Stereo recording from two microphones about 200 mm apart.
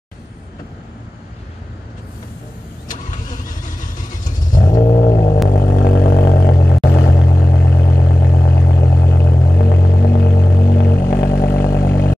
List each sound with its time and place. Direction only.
4.6 s a sound: 45° left (ahead or behind)
5.1 s music: 50° left (ahead or behind)
5.5 s a sound: 50° left (ahead or behind)
8.0 s vehicle: 50° left (ahead or behind)
8.5 s music: 50° left (ahead or behind)
11.3 s vehicle: 50° left (ahead or behind)